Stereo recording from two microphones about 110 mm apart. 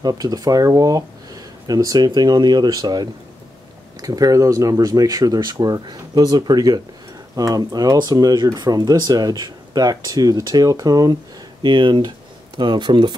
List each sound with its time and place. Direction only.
0.0 s speech: 35° right (ahead or behind)
11.6 s speech: 45° right (ahead or behind)